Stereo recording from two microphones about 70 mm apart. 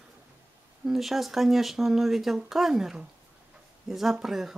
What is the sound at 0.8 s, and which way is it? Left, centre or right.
Speech, centre.